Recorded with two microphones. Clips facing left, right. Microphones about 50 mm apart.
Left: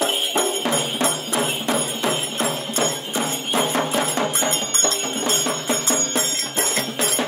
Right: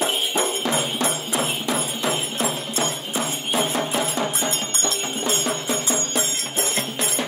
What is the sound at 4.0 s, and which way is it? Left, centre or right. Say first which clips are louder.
Music: left 2 dB; left.